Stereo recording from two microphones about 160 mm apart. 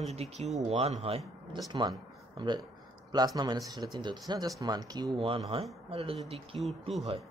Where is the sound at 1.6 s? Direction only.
25° right (ahead or behind).